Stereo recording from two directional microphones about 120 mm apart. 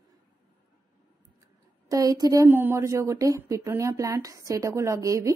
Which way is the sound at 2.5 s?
20° right (ahead or behind).